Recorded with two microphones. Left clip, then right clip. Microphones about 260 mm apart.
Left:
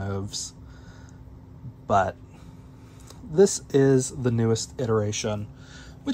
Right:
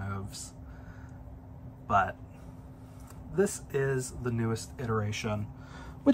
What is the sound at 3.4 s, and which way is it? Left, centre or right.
Speech, centre.